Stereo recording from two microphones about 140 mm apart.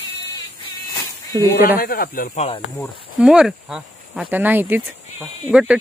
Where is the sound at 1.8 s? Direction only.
90° left.